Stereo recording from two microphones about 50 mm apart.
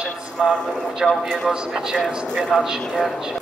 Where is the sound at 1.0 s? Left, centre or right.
Centre.